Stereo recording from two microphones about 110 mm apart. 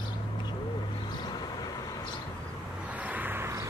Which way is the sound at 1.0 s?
40° left (ahead or behind).